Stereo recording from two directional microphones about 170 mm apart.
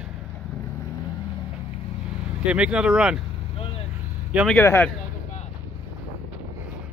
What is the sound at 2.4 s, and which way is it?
Speech, 5° right (ahead or behind).